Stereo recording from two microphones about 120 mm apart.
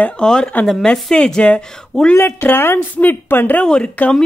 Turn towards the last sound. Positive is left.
turn(degrees=10)  # may be behind; listen again after turning